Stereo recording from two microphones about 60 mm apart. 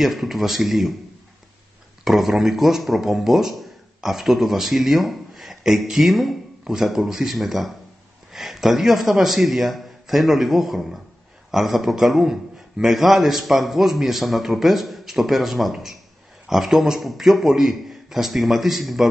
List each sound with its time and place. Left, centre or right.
0.0 s speech: centre
2.0 s speech: centre